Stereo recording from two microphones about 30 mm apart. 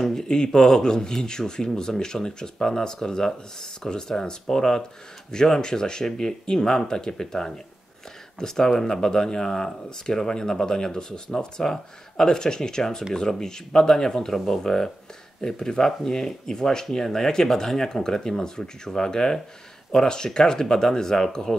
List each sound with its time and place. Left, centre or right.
0.0 s speech: centre